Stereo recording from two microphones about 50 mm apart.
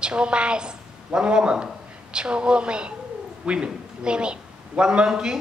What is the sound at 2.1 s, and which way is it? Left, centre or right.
A woman's voice, centre.